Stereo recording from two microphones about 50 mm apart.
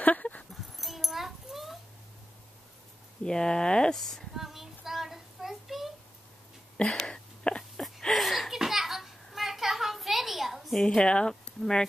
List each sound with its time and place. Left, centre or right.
0.0 s dog: left
0.5 s dog: centre
3.3 s speech: centre
3.9 s child singing: centre
6.8 s a sound: centre
8.1 s a sound: centre
11.0 s speech: centre